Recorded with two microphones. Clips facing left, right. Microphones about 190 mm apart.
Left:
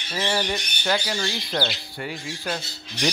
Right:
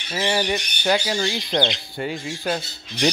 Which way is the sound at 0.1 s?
15° right (ahead or behind).